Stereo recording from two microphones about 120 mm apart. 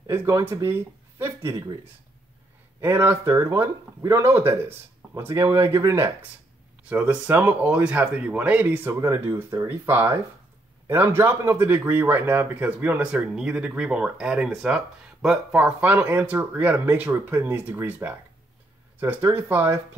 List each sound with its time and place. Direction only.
0.0 s speech: 25° right (ahead or behind)
2.8 s speech: 20° right (ahead or behind)
6.8 s speech: 10° right (ahead or behind)